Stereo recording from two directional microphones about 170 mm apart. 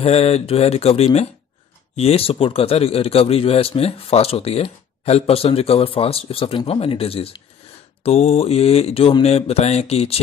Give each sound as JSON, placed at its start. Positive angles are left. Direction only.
{"t": 0.0, "sound": "speech", "side_deg": 35}